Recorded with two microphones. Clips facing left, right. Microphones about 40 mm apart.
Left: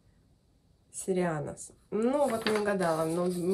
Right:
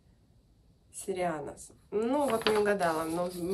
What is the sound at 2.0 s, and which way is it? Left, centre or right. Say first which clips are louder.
Speech: left 3 dB; right.